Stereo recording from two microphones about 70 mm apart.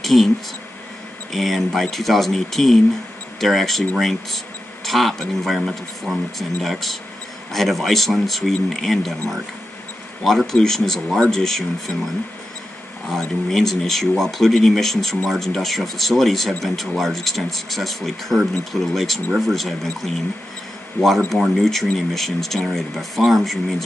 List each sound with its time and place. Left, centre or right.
0.0 s speech: centre
1.3 s speech: centre
10.2 s speech: centre
13.1 s speech: centre
21.3 s speech: centre